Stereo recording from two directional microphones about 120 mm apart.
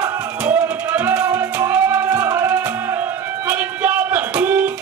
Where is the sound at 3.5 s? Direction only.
15° right (ahead or behind).